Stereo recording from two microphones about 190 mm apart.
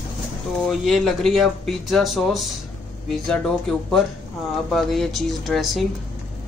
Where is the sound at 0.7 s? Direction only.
Centre (ahead or behind).